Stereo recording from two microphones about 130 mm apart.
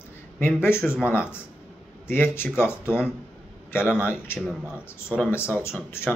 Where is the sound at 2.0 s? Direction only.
15° left (ahead or behind).